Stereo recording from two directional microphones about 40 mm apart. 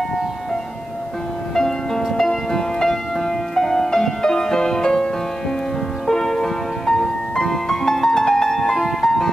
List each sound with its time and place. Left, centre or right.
1.5 s music: centre